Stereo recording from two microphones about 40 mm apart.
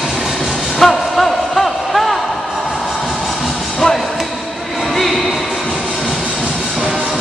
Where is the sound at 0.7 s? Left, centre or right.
Centre.